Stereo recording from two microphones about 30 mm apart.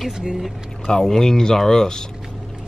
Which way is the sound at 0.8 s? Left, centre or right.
Left.